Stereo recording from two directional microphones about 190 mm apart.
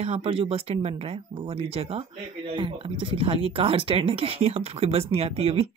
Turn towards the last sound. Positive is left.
turn(degrees=-30)  # may be behind; listen again after turning